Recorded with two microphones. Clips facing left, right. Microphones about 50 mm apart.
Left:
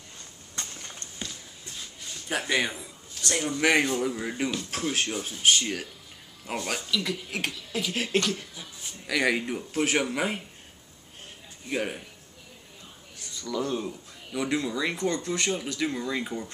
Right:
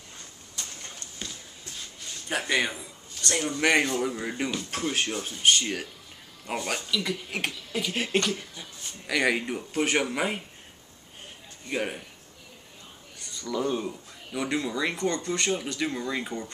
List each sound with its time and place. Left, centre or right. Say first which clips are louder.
0.6 s a sound: left 2 dB; left
2.2 s speech: even; centre
11.7 s speech: even; centre
13.2 s speech: right 1 dB; centre